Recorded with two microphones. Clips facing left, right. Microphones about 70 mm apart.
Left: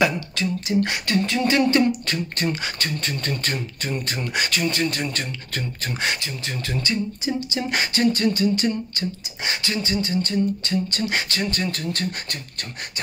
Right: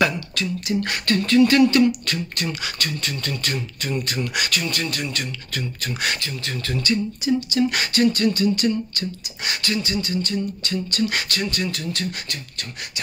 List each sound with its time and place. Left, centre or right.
0.0 s speech: left
1.6 s speech: left